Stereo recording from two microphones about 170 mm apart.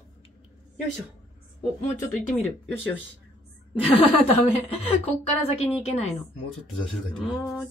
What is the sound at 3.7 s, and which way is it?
A woman's voice, 30° left (ahead or behind).